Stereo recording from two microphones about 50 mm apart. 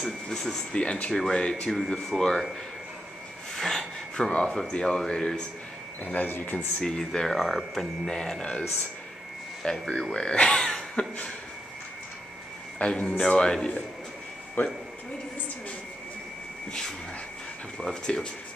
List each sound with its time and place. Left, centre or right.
0.3 s speech: centre
1.7 s speech: centre
3.5 s snort: centre
4.3 s speech: centre
6.0 s speech: left
6.8 s speech: centre
8.1 s speech: centre
9.6 s speech: centre
10.1 s speech: centre
12.7 s speech: left
14.6 s speech: left
17.7 s speech: centre